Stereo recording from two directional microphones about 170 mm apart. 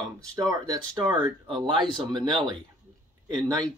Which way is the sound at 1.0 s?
25° right (ahead or behind).